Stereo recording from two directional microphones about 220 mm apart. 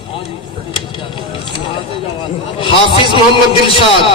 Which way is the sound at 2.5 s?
20° left (ahead or behind).